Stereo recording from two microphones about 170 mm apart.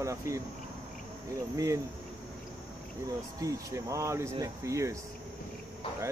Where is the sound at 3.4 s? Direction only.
20° right (ahead or behind).